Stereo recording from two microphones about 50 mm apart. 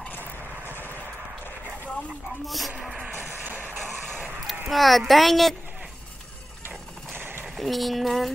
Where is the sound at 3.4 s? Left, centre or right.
Right.